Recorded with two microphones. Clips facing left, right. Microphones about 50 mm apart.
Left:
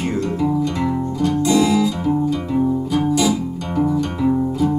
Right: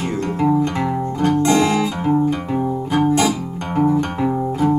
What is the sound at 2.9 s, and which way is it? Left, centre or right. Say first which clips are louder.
Music: right 6 dB; right.